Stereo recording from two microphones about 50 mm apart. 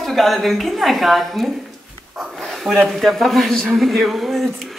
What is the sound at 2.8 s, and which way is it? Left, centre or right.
Speech, centre.